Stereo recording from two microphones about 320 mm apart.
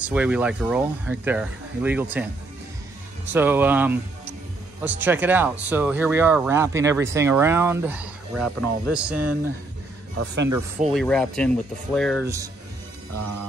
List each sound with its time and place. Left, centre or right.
0.0 s speech: centre
3.3 s speech: centre
10.1 s speech: right
10.9 s speech: centre